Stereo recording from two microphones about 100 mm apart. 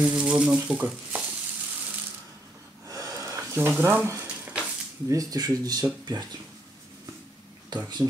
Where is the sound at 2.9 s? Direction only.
35° right (ahead or behind).